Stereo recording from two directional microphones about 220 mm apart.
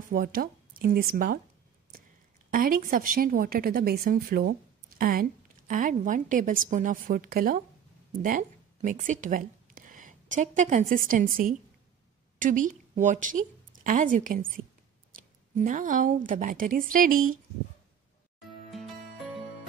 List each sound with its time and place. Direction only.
0.1 s speech: 40° right (ahead or behind)
2.5 s a woman's voice: 40° right (ahead or behind)
18.7 s music: centre (ahead or behind)